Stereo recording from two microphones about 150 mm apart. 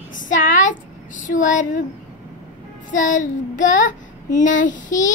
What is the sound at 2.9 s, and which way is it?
A child's voice, 60° left (ahead or behind).